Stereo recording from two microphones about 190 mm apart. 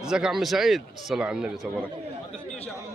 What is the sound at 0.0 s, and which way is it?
Speech, 5° right (ahead or behind).